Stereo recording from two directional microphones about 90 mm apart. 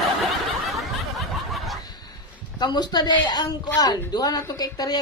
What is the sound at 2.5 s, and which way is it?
A man's voice, 50° left (ahead or behind).